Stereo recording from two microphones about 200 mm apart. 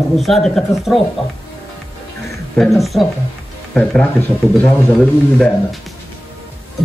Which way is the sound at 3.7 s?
10° left (ahead or behind).